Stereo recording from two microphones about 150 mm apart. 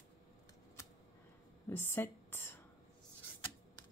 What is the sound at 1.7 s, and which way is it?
Speech, 15° left (ahead or behind).